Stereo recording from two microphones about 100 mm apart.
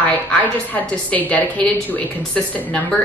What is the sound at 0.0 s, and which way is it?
A woman's voice, 15° left (ahead or behind).